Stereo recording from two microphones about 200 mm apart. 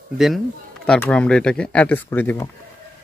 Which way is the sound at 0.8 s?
5° left (ahead or behind).